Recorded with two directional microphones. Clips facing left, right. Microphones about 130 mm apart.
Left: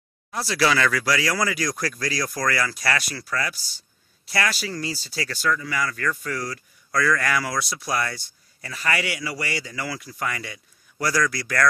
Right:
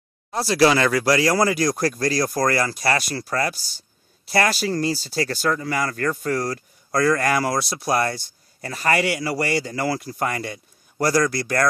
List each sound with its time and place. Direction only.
0.3 s speech: 35° right (ahead or behind)